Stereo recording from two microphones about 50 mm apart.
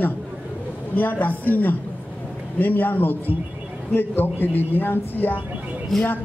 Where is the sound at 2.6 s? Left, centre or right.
Left.